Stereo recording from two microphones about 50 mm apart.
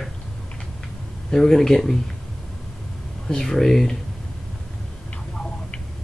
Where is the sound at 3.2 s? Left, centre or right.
Centre.